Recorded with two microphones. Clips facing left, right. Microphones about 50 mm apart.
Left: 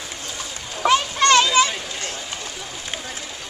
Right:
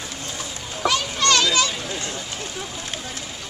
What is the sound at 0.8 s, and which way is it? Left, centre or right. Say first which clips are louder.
Children playing: left 4 dB; left.